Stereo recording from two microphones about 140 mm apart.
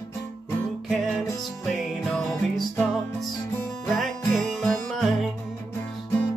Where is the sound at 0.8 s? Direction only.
Centre (ahead or behind).